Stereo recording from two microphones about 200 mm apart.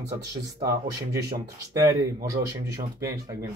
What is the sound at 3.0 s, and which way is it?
Speech, 15° right (ahead or behind).